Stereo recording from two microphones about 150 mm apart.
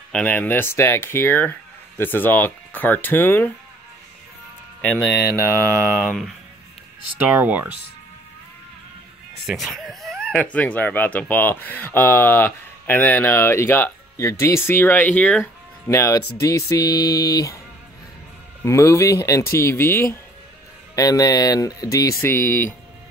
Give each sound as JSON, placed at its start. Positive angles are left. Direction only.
{"t": 0.1, "sound": "speech", "side_deg": 10}
{"t": 5.4, "sound": "mantra", "side_deg": -15}
{"t": 5.9, "sound": "speech", "side_deg": 0}
{"t": 7.2, "sound": "mantra", "side_deg": -10}
{"t": 9.5, "sound": "speech", "side_deg": 0}
{"t": 15.9, "sound": "speech", "side_deg": 20}
{"t": 18.6, "sound": "speech", "side_deg": 20}